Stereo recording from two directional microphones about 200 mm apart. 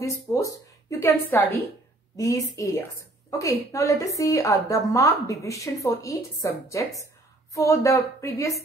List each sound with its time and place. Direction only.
0.0 s a woman's voice: 15° left (ahead or behind)